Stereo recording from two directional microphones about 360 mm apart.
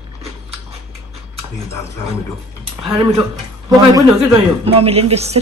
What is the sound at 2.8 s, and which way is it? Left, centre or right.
Speech, centre.